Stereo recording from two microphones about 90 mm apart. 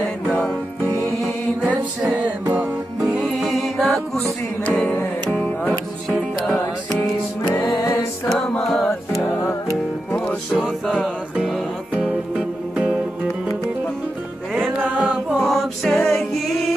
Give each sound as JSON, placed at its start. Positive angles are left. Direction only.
{"t": 0.3, "sound": "music", "side_deg": 5}
{"t": 1.6, "sound": "music", "side_deg": -15}
{"t": 3.3, "sound": "music", "side_deg": 0}
{"t": 4.6, "sound": "music", "side_deg": 15}
{"t": 7.6, "sound": "music", "side_deg": 50}
{"t": 8.3, "sound": "music", "side_deg": 5}
{"t": 9.1, "sound": "music", "side_deg": 30}
{"t": 10.5, "sound": "music", "side_deg": 0}
{"t": 12.4, "sound": "music", "side_deg": -10}
{"t": 14.8, "sound": "a sound", "side_deg": -15}
{"t": 15.2, "sound": "music", "side_deg": -5}